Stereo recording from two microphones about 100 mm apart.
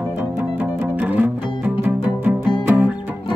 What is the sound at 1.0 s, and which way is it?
Music, 15° right (ahead or behind).